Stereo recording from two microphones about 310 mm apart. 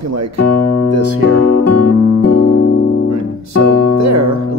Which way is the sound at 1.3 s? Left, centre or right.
Left.